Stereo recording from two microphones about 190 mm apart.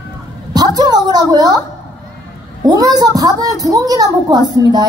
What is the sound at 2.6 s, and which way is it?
A woman's voice, 20° right (ahead or behind).